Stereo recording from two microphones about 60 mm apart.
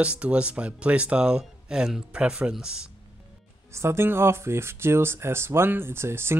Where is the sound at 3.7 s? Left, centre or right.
Right.